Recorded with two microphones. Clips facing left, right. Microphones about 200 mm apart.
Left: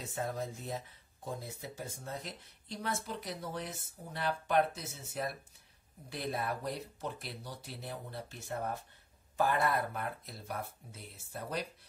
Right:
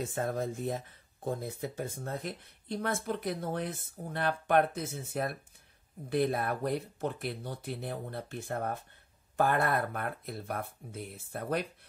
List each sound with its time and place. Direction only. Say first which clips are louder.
0.0 s speech: right 5 dB; 50° right (ahead or behind)